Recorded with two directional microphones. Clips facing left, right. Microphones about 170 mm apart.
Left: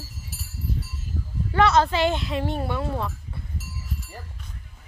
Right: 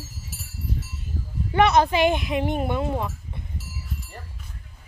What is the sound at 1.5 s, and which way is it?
Speech, 20° right (ahead or behind).